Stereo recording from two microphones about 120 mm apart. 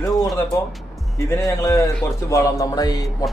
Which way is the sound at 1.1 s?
25° left (ahead or behind).